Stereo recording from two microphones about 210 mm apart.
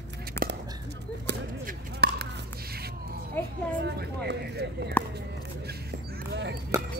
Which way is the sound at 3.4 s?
10° left (ahead or behind).